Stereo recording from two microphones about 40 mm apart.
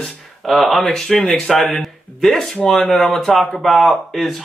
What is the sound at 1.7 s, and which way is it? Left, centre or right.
Speech, centre.